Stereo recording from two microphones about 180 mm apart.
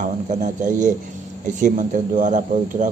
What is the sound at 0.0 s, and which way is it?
A man's voice, 45° right (ahead or behind).